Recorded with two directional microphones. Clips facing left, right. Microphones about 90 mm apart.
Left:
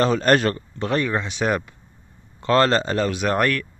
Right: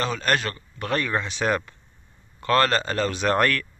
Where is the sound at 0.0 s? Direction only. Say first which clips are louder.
Left 7 dB; 35° left (ahead or behind).